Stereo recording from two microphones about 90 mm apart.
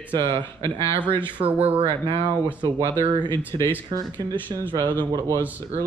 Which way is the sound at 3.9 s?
45° right (ahead or behind).